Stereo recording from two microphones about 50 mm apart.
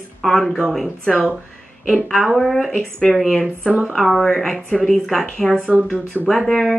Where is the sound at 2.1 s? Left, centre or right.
Centre.